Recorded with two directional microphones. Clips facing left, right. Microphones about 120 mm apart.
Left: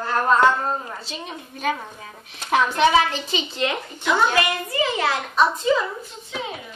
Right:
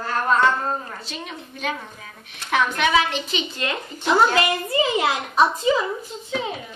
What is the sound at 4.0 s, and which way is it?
Speech, 30° right (ahead or behind).